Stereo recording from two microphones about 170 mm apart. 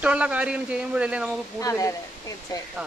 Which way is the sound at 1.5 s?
20° left (ahead or behind).